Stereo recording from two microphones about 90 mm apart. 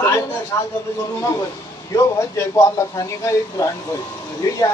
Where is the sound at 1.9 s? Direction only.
35° left (ahead or behind).